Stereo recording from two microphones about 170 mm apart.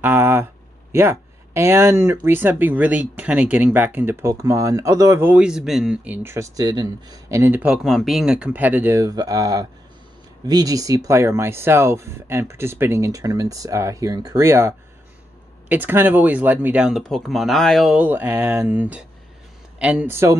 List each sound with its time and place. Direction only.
0.0 s a sound: 10° right (ahead or behind)
0.9 s speech: 15° right (ahead or behind)
15.7 s speech: 10° right (ahead or behind)